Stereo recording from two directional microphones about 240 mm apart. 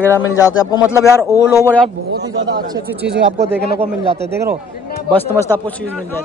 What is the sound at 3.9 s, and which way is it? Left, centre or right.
Speech, centre.